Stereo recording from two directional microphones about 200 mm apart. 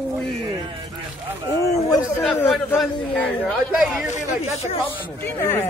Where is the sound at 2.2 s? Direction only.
Centre (ahead or behind).